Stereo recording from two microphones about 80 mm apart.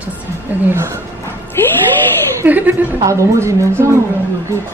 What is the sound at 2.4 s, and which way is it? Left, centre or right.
Speech, right.